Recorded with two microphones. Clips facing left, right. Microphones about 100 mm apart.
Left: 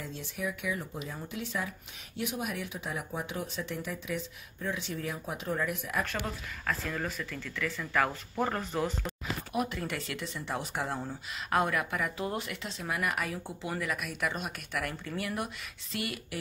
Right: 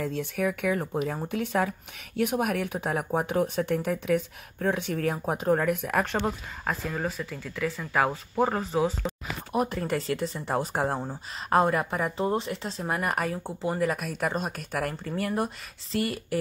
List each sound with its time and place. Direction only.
0.0 s speech: 60° right (ahead or behind)
6.2 s a woman's voice: 30° right (ahead or behind)
6.8 s speech: 15° right (ahead or behind)
9.5 s speech: 40° right (ahead or behind)